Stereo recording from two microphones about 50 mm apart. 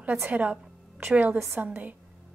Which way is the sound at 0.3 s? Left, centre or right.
Right.